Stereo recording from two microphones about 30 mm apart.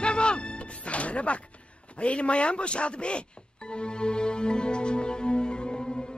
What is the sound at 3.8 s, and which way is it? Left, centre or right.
Music, left.